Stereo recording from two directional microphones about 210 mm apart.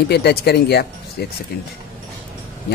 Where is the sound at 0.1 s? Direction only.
50° left (ahead or behind).